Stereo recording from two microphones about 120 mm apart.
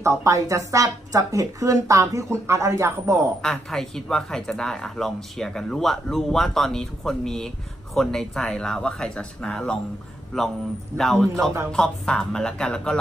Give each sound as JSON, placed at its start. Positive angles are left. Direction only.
{"t": 0.0, "sound": "speech", "side_deg": -25}
{"t": 3.4, "sound": "speech", "side_deg": 5}